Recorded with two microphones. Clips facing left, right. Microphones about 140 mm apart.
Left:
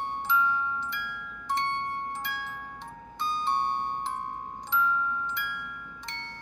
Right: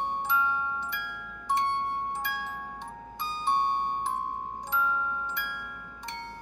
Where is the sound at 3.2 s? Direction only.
10° right (ahead or behind).